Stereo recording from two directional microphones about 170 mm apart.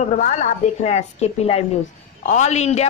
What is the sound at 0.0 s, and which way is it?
A woman's voice, 45° left (ahead or behind).